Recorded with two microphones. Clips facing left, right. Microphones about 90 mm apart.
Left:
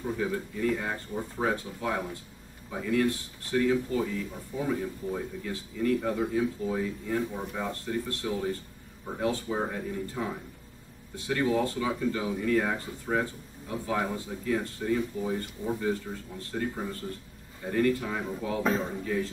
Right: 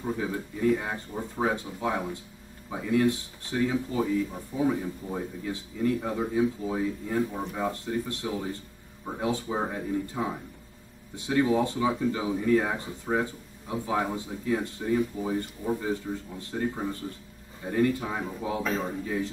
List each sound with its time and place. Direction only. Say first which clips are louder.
0.0 s speech: even; 15° right (ahead or behind)